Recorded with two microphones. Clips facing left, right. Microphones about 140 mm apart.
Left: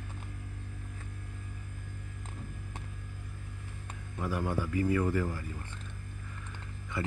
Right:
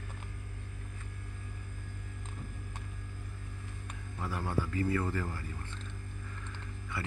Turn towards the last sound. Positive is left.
turn(degrees=20)  # may be behind; listen again after turning